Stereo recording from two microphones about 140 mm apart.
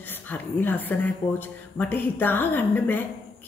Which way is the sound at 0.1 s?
15° left (ahead or behind).